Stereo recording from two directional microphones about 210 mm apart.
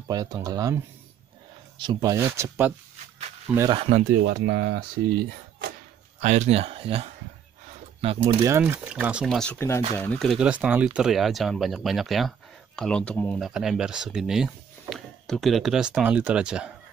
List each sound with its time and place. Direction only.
0.1 s speech: 20° right (ahead or behind)
1.8 s speech: 20° right (ahead or behind)
3.7 s speech: 30° right (ahead or behind)
4.1 s speech: 50° right (ahead or behind)
6.2 s speech: 35° right (ahead or behind)
8.4 s speech: 15° right (ahead or behind)